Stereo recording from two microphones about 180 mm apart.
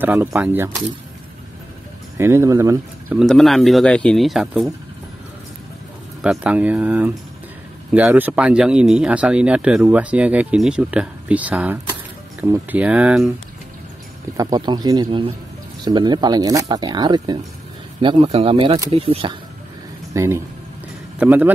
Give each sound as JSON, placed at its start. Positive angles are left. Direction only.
{"t": 0.0, "sound": "speech", "side_deg": -10}
{"t": 2.1, "sound": "speech", "side_deg": -15}
{"t": 3.2, "sound": "speech", "side_deg": 0}
{"t": 6.2, "sound": "speech", "side_deg": -5}
{"t": 14.3, "sound": "speech", "side_deg": -20}
{"t": 20.2, "sound": "speech", "side_deg": -15}